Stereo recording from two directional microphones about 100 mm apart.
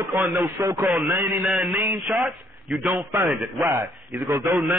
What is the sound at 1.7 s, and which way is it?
Speech, 25° right (ahead or behind).